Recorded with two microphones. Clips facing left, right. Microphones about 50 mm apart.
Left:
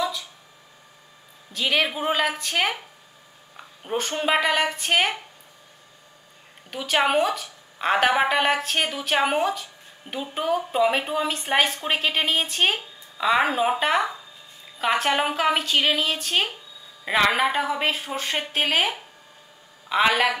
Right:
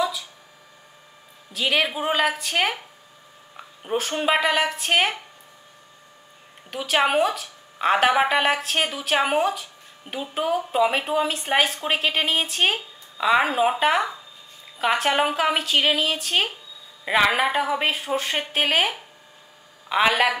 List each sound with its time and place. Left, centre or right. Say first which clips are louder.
1.5 s a woman's voice: right 1 dB; centre
3.8 s a woman's voice: right 2 dB; centre
6.7 s a woman's voice: right 1 dB; centre